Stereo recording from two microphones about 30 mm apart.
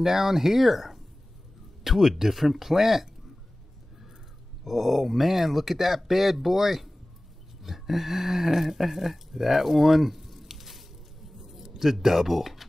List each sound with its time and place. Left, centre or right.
0.0 s speech: centre
4.6 s speech: centre
11.3 s a sound: centre